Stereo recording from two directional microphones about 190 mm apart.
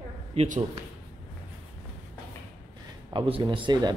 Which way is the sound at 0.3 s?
35° right (ahead or behind).